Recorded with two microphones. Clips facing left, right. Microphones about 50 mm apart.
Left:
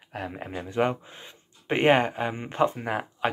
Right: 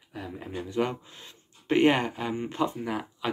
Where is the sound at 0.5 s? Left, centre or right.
Left.